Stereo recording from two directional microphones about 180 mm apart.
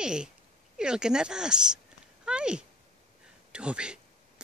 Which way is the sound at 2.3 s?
5° right (ahead or behind).